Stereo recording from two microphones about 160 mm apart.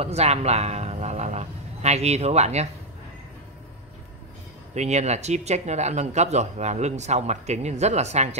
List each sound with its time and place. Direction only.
0.0 s a man's voice: 40° right (ahead or behind)
4.7 s speech: 45° right (ahead or behind)